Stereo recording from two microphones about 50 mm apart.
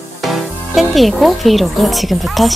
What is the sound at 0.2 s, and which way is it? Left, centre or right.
Speech, centre.